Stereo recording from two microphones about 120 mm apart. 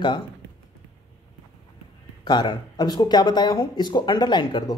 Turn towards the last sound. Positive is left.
turn(degrees=40)  # may be behind; listen again after turning